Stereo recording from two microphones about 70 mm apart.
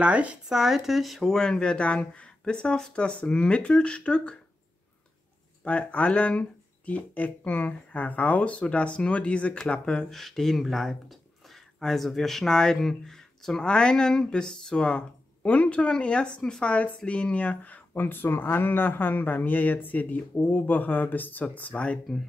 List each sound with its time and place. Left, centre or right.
0.0 s speech: centre
0.5 s speech: centre
5.6 s speech: centre